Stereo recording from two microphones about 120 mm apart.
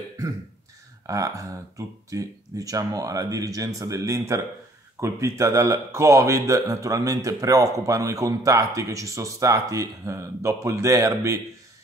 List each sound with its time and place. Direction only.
1.0 s speech: 25° right (ahead or behind)